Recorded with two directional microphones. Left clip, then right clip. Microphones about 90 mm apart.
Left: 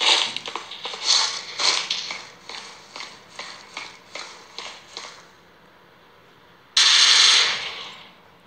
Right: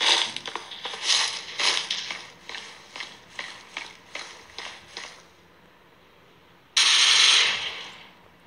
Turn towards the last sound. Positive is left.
turn(degrees=-50)  # may be behind; listen again after turning